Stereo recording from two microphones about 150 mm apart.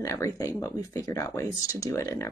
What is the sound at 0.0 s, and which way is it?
Speech, 20° left (ahead or behind).